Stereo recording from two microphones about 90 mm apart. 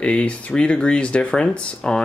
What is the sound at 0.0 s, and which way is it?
Speech, 15° left (ahead or behind).